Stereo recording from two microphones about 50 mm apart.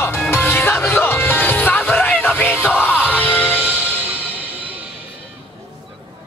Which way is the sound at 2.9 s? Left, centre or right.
Right.